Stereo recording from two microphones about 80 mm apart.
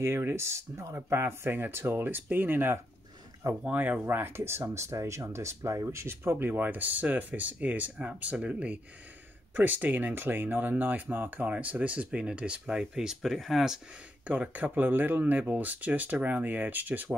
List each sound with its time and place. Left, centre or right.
0.0 s speech: right; by 13.7 s centre
14.2 s speech: centre